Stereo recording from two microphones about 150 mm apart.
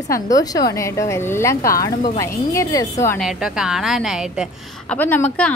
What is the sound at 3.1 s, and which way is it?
Speech, 5° right (ahead or behind).